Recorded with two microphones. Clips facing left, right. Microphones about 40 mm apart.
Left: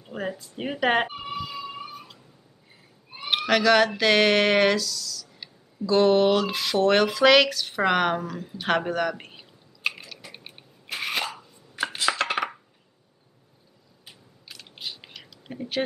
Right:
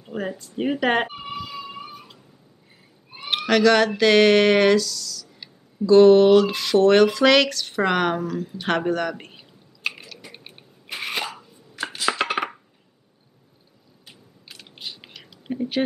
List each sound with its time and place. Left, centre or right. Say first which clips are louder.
0.0 s a sound: right 2 dB; centre
3.1 s speech: right 1 dB; centre
11.7 s chopping: left 1 dB; centre
12.0 s chopping: right 2 dB; centre
14.5 s gears: even; centre
15.2 s a sound: right 9 dB; centre